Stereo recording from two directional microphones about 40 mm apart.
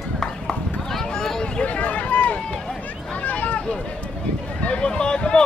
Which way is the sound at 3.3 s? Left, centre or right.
Left.